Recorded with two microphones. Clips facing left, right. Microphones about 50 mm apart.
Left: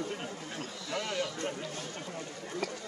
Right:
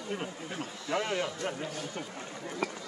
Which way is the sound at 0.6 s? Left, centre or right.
Right.